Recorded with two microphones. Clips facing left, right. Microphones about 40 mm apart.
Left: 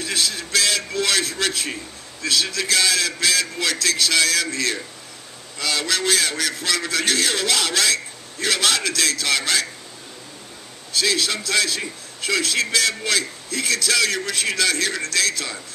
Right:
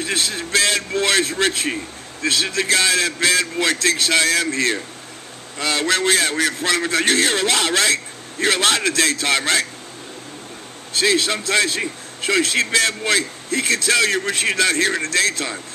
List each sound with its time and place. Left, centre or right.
0.0 s a man's voice: right
11.0 s a man's voice: right